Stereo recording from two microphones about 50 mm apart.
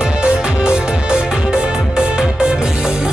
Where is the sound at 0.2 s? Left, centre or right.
Centre.